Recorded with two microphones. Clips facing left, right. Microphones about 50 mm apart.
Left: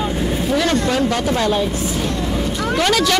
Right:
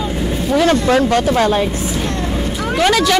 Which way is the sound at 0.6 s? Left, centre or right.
Right.